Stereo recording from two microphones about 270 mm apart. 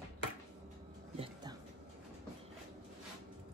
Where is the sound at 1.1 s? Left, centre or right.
Right.